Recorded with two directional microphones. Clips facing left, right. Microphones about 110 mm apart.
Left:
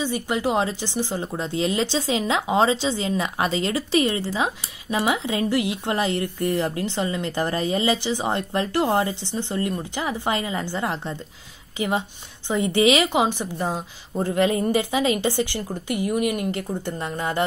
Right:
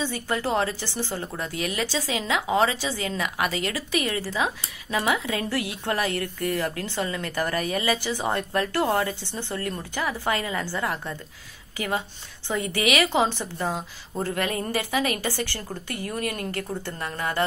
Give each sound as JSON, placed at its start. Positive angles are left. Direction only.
{"t": 0.0, "sound": "a woman's voice", "side_deg": 15}